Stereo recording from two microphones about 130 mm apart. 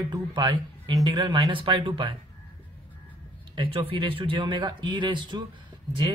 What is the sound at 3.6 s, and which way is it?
Speech, 40° right (ahead or behind).